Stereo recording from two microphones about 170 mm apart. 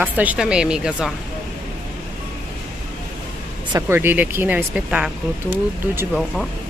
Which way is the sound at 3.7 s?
15° right (ahead or behind).